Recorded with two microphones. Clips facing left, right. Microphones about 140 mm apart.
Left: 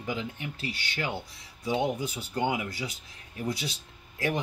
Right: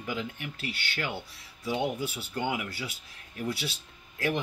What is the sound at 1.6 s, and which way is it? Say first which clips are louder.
Speech: left 2 dB; 20° left (ahead or behind).